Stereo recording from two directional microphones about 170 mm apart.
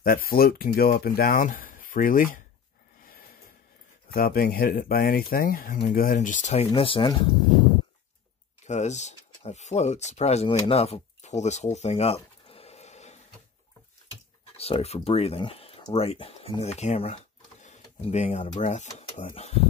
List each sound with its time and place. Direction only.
0.0 s speech: 60° left (ahead or behind)
4.1 s speech: 60° left (ahead or behind); by 7.1 s 30° left (ahead or behind)
8.6 s speech: 40° left (ahead or behind)
14.6 s speech: 35° left (ahead or behind)